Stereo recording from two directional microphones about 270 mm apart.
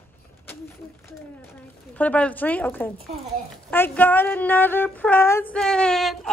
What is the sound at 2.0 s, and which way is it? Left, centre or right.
Female singing, centre.